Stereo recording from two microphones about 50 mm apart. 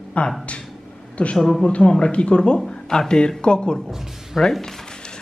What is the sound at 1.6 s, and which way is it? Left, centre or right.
Speech, centre.